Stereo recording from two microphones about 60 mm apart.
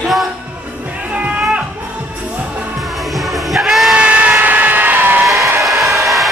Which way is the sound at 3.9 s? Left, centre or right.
Right.